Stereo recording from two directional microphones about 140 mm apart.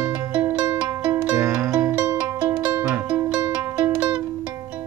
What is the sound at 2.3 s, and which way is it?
Music, 20° right (ahead or behind).